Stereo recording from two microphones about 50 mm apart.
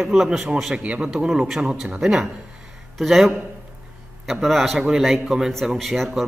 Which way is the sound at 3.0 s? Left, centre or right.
Centre.